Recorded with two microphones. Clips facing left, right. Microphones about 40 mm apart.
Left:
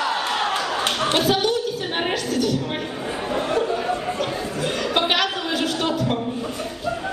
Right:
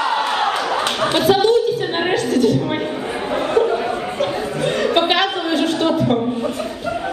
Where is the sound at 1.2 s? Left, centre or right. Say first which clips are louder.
Right 10 dB; centre.